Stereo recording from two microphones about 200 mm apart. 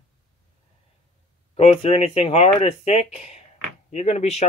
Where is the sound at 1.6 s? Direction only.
30° left (ahead or behind).